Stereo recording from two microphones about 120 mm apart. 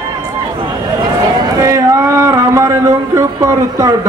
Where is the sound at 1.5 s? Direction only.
25° right (ahead or behind).